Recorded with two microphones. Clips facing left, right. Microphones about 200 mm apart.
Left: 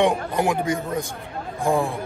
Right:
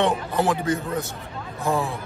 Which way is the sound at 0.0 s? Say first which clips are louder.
Left 2 dB; 10° left (ahead or behind).